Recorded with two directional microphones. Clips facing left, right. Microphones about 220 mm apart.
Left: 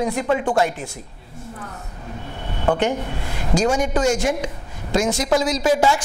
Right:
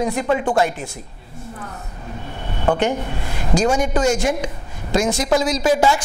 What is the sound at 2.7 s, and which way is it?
A woman's voice, 15° right (ahead or behind).